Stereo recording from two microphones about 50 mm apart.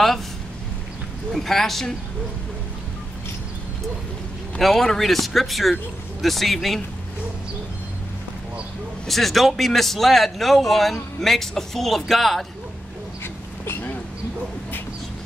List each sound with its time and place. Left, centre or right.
1.3 s a man's voice: centre
4.6 s a man's voice: centre
9.0 s a man's voice: centre
13.2 s a sound: left